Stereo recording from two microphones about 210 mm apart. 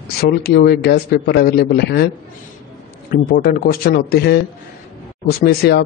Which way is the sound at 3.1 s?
50° left (ahead or behind).